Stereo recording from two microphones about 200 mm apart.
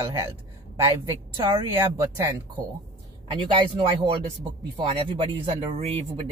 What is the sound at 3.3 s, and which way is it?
Speech, 25° right (ahead or behind).